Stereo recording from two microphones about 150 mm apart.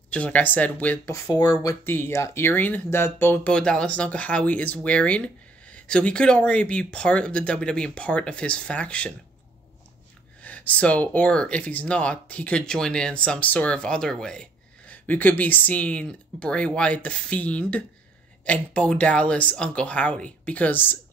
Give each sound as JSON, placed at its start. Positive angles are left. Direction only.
{"t": 0.1, "sound": "speech", "side_deg": 10}
{"t": 1.1, "sound": "speech", "side_deg": 25}
{"t": 10.4, "sound": "speech", "side_deg": 10}